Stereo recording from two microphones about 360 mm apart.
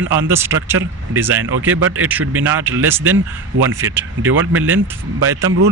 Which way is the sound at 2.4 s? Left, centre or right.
Centre.